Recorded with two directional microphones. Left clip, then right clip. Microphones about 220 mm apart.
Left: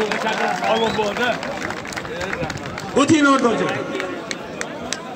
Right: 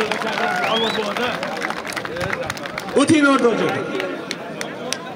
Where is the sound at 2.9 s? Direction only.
45° right (ahead or behind).